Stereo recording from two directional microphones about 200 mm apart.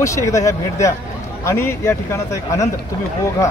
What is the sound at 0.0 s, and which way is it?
A man's voice, 15° left (ahead or behind).